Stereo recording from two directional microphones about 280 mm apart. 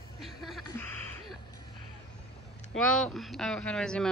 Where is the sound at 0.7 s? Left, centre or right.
Centre.